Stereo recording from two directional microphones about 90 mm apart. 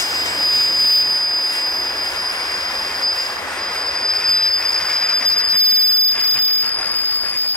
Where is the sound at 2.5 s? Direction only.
50° left (ahead or behind).